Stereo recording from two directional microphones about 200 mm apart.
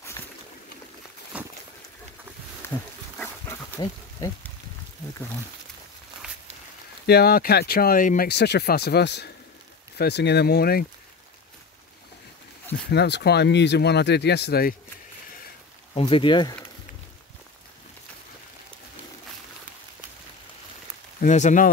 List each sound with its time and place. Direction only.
1.3 s a sound: 5° right (ahead or behind)
2.6 s wild animals: 10° left (ahead or behind)
3.2 s dog: 15° left (ahead or behind)
7.1 s speech: 50° left (ahead or behind)
12.9 s speech: 55° left (ahead or behind)
15.9 s speech: 25° left (ahead or behind)
21.2 s speech: 35° left (ahead or behind)